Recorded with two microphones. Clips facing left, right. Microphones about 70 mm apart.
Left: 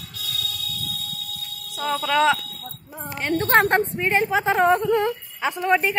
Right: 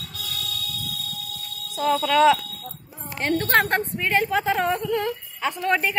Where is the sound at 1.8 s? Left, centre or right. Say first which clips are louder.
Right 2 dB; centre.